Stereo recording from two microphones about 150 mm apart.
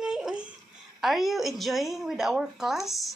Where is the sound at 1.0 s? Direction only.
Centre (ahead or behind).